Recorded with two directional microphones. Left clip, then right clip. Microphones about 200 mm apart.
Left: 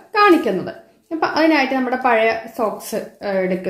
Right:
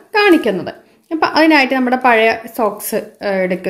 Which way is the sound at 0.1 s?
35° right (ahead or behind).